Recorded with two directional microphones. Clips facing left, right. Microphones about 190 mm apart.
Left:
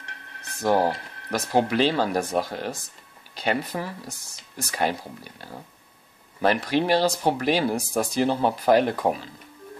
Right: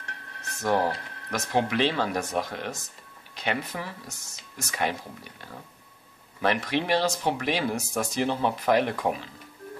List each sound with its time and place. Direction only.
0.6 s speech: 35° left (ahead or behind)
6.4 s speech: 35° left (ahead or behind)